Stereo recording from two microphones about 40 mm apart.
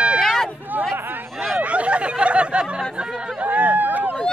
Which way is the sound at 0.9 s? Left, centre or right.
Right.